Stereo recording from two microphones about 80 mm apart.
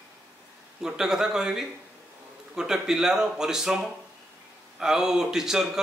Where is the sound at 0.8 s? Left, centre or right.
Centre.